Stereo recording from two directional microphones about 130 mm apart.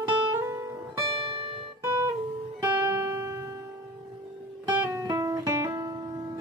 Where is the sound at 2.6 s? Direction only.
20° right (ahead or behind).